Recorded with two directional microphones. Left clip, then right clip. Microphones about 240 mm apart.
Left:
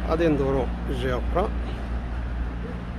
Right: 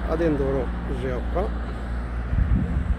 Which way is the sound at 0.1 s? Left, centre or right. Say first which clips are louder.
Left 1 dB; centre.